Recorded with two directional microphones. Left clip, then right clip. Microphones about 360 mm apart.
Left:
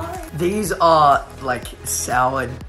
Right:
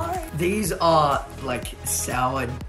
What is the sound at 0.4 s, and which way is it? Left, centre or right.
Speech, centre.